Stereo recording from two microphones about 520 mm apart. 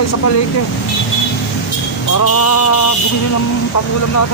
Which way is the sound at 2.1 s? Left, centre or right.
Left.